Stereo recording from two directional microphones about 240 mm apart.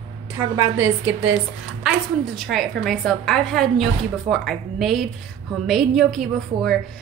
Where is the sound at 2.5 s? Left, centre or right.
Centre.